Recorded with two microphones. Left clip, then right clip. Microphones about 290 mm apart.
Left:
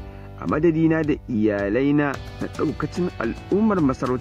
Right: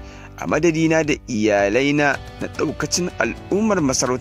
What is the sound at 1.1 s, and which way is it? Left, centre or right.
Speech, right.